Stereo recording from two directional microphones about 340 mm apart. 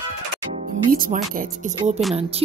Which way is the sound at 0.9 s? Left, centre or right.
Right.